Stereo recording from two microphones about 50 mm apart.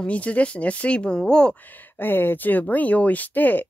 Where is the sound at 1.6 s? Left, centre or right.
Left.